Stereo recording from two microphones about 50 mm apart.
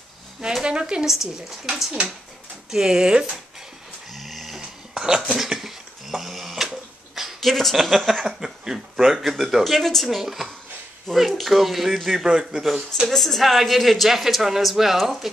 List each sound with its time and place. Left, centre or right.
0.7 s a woman's voice: centre
1.0 s speech: centre
2.7 s speech: centre
4.1 s dog: centre
4.6 s a sound: centre
8.3 s speech: centre
13.1 s speech: centre